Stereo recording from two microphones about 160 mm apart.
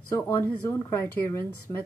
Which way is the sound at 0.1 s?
15° left (ahead or behind).